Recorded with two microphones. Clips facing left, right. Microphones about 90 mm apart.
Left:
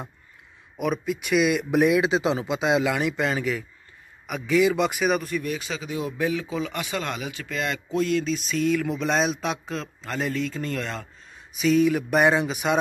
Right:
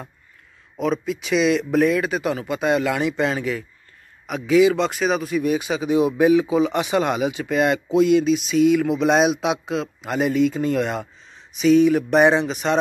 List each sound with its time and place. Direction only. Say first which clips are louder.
0.7 s speech: right 3 dB; 10° left (ahead or behind)
2.9 s speech: right 3 dB; centre (ahead or behind)
5.3 s speech: right 7 dB; 15° right (ahead or behind)
7.9 s speech: right 7 dB; 10° right (ahead or behind)
11.3 s speech: right 5 dB; centre (ahead or behind)